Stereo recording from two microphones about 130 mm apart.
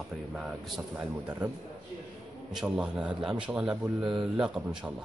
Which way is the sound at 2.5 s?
5° right (ahead or behind).